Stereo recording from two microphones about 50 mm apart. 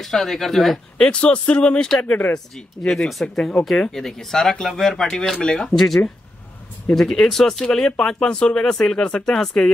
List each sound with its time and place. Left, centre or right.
0.0 s speech: centre
1.0 s speech: left
2.0 s speech: left
2.3 s speech: centre
5.4 s speech: centre
5.8 s speech: centre